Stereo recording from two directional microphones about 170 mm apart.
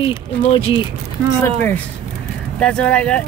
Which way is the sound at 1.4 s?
10° left (ahead or behind).